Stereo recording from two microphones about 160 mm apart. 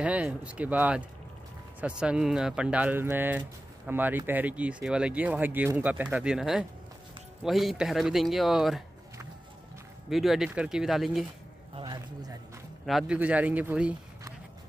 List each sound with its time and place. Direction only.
0.0 s speech: 5° right (ahead or behind)
10.0 s speech: centre (ahead or behind)
11.7 s a sound: 30° right (ahead or behind)
12.8 s speech: 5° right (ahead or behind)